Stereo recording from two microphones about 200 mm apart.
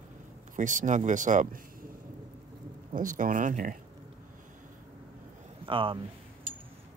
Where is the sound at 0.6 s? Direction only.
40° right (ahead or behind).